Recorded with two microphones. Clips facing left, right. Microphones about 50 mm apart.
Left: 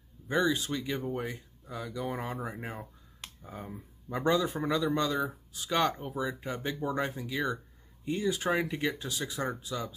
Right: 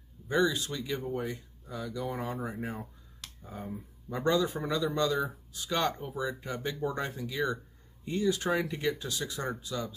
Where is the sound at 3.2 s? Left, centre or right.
Left.